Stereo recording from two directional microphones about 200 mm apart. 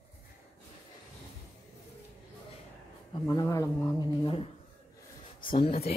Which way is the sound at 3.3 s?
15° left (ahead or behind).